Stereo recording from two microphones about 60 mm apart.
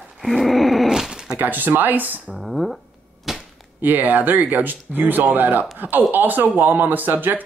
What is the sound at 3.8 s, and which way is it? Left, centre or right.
Speech, right.